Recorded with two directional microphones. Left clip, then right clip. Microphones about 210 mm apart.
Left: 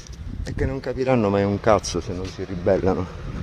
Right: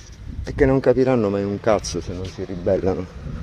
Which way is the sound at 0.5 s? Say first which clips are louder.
Right 11 dB; 10° right (ahead or behind).